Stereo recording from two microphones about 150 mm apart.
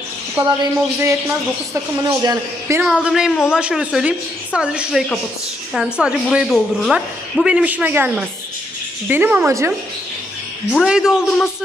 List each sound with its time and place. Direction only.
0.4 s a woman's voice: 20° right (ahead or behind)
2.8 s a woman's voice: 5° right (ahead or behind)
10.8 s speech: 5° right (ahead or behind)